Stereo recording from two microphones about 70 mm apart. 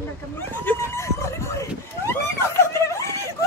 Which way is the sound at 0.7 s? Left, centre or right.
Left.